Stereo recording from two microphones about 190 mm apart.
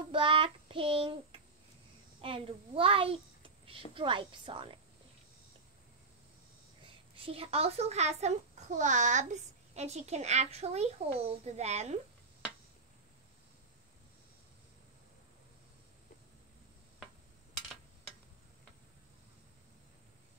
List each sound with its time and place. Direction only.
0.1 s child singing: 30° right (ahead or behind)
2.2 s a child's voice: 30° right (ahead or behind)
7.2 s a child's voice: 30° right (ahead or behind)